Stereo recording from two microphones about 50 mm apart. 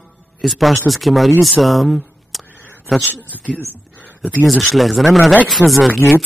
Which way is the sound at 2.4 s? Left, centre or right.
Left.